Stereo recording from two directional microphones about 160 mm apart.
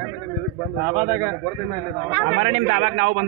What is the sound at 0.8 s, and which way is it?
Speech, 10° right (ahead or behind).